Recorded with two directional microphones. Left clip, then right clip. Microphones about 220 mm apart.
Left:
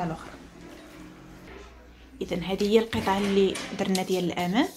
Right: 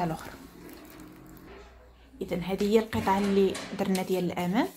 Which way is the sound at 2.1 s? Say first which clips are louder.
Left 2 dB; centre (ahead or behind).